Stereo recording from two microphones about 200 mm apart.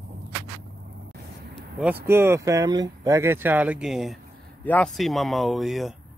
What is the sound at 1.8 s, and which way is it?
A man's voice, 10° right (ahead or behind).